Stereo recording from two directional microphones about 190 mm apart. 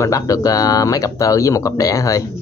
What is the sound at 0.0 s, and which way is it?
Speech, 15° left (ahead or behind).